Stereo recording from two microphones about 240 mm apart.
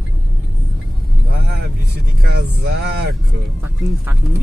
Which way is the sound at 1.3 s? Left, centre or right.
Right.